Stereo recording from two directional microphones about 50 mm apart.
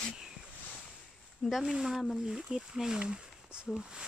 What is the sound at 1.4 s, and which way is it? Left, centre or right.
Speech, centre.